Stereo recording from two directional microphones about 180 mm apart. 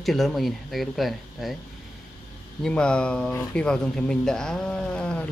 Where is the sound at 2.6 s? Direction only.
5° left (ahead or behind).